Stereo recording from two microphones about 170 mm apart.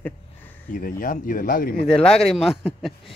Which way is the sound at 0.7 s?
55° left (ahead or behind).